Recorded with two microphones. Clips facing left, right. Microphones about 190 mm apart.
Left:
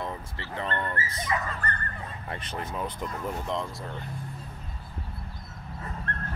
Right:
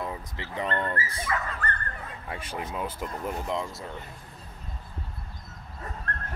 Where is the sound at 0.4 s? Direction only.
20° right (ahead or behind).